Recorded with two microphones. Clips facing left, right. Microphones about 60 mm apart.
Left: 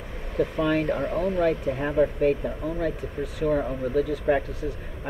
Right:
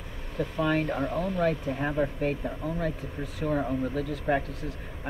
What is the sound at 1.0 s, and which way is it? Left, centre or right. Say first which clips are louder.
Speech: left 4 dB; left.